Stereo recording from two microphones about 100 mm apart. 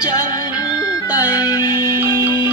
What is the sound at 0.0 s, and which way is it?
Music, 40° left (ahead or behind).